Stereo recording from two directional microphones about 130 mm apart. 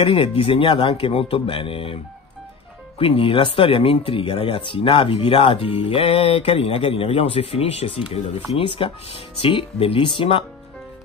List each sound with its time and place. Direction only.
0.0 s speech: 45° left (ahead or behind)
3.0 s speech: 45° left (ahead or behind)